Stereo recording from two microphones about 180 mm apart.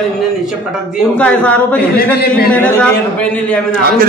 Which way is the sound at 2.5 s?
10° left (ahead or behind).